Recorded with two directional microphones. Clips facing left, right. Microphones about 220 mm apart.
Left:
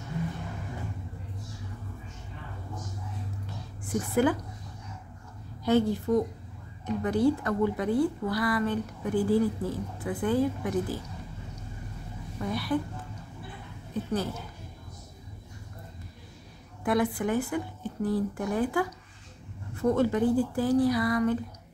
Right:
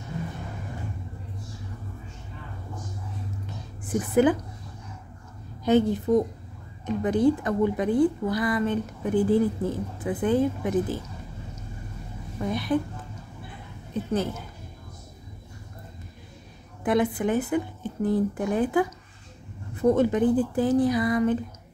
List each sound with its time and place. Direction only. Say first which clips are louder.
3.9 s a woman's voice: right 4 dB; 20° right (ahead or behind)
5.7 s a woman's voice: right 3 dB; 20° right (ahead or behind)
12.4 s a woman's voice: right 4 dB; 20° right (ahead or behind)
13.9 s a woman's voice: right 2 dB; 20° right (ahead or behind)
16.8 s a woman's voice: right 3 dB; 20° right (ahead or behind)